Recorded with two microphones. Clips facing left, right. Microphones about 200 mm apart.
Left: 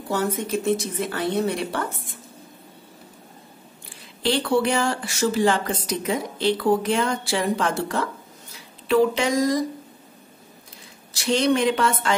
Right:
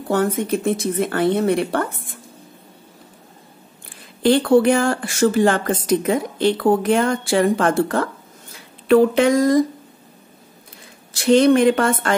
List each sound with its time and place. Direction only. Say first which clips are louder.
0.1 s speech: right 5 dB; 55° right (ahead or behind)
4.2 s a woman's voice: right 7 dB; 50° right (ahead or behind)
11.1 s a woman's voice: right 7 dB; 55° right (ahead or behind)